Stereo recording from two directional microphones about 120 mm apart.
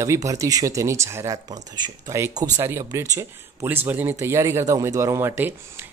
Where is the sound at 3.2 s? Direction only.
15° right (ahead or behind).